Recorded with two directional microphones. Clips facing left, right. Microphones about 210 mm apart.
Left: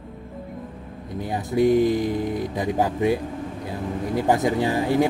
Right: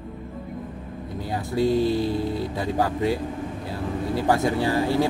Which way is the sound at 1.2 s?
20° left (ahead or behind).